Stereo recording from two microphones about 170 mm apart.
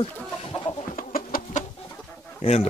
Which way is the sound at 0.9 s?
55° left (ahead or behind).